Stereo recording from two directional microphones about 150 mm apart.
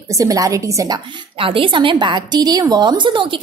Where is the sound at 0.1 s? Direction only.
25° right (ahead or behind).